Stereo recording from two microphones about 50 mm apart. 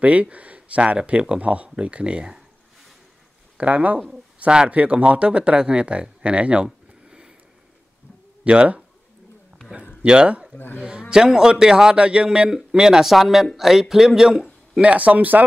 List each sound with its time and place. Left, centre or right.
0.0 s speech: right
3.5 s speech: right
8.5 s speech: right
10.0 s a man's voice: right
14.8 s speech: right